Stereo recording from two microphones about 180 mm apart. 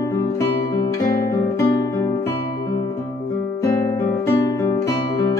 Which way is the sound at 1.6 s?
20° left (ahead or behind).